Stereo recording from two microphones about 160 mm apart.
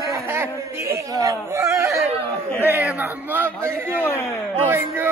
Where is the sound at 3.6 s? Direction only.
15° right (ahead or behind).